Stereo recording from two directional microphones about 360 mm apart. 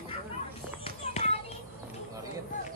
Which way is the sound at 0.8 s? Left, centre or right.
Centre.